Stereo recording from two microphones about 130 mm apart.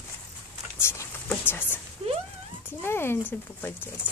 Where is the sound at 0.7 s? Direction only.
20° left (ahead or behind).